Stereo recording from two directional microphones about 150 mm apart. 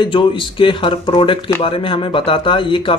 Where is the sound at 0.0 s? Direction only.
35° left (ahead or behind).